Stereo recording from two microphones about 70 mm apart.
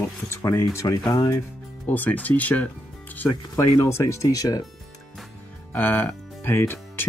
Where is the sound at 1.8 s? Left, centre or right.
Left.